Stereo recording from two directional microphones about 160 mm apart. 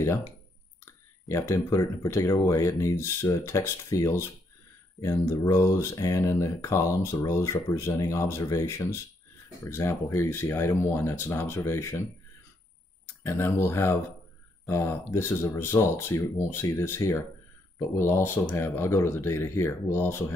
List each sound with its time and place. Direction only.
1.3 s speech: 15° left (ahead or behind)
13.2 s speech: 15° left (ahead or behind)